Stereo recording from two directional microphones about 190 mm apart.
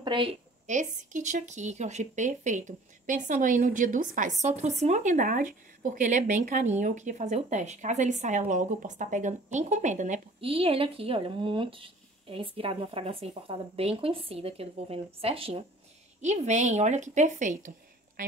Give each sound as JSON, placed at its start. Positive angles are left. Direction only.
{"t": 0.0, "sound": "speech", "side_deg": -25}
{"t": 0.7, "sound": "a woman's voice", "side_deg": -40}